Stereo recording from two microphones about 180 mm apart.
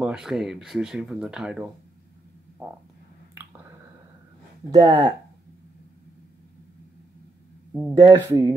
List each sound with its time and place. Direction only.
0.0 s speech: 5° right (ahead or behind)
4.6 s speech: 25° right (ahead or behind)
7.9 s speech: 20° right (ahead or behind)